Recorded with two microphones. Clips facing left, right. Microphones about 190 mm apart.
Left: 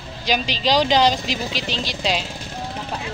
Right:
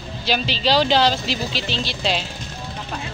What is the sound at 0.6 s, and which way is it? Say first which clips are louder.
Speech: even; 10° left (ahead or behind).